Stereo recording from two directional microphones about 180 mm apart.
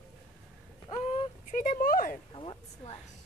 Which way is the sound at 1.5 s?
45° left (ahead or behind).